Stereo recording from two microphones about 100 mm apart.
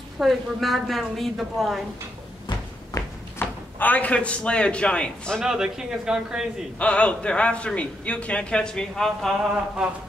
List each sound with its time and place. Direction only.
0.2 s a woman's voice: centre (ahead or behind)
3.0 s a sound: 35° left (ahead or behind)
3.3 s speech: 15° left (ahead or behind)
5.4 s a woman's voice: 5° right (ahead or behind)
6.8 s a man's voice: 10° left (ahead or behind); by 9.9 s 5° right (ahead or behind)